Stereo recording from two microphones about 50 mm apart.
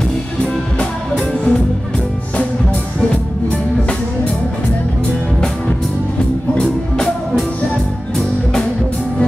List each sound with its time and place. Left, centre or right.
0.4 s music: centre
6.5 s music: centre